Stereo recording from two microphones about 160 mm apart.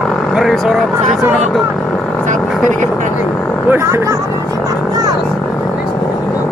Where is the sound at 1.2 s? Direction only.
10° right (ahead or behind).